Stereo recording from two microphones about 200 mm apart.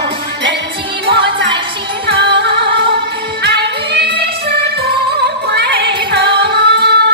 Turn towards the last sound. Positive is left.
turn(degrees=-55)  # may be behind; listen again after turning